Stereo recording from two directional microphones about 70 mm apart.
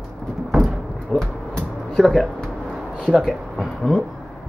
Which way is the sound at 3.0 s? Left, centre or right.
Centre.